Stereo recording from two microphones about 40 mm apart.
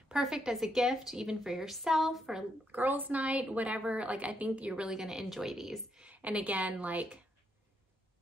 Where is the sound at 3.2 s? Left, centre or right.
Right.